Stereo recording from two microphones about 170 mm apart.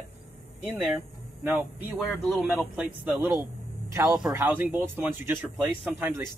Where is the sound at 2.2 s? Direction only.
Centre (ahead or behind).